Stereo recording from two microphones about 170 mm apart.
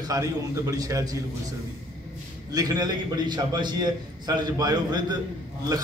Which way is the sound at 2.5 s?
20° right (ahead or behind).